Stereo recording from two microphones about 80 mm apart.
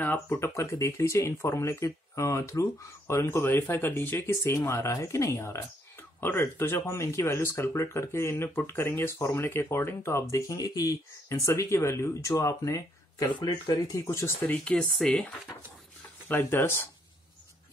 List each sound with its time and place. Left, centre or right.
0.0 s speech: left
14.5 s speech: centre
16.3 s speech: left